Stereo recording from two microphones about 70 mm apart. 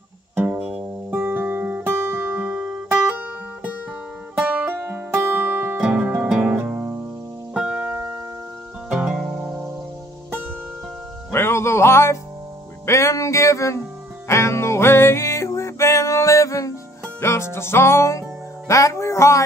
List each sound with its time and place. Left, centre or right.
0.4 s music: right
2.7 s music: right
4.4 s music: centre
4.7 s music: right
5.8 s music: centre
7.5 s music: centre
11.3 s music: left